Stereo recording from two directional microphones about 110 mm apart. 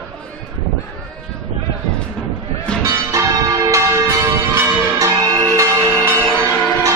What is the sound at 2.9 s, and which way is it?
Church bell, 30° right (ahead or behind).